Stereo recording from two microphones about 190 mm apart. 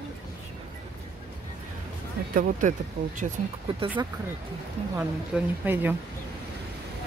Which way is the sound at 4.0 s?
20° right (ahead or behind).